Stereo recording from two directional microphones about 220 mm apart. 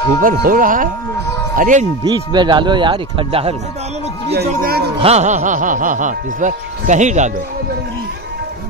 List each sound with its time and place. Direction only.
0.2 s speech: 40° right (ahead or behind)
2.0 s speech: 20° right (ahead or behind)
4.3 s speech: 45° right (ahead or behind)
4.9 s speech: 30° right (ahead or behind)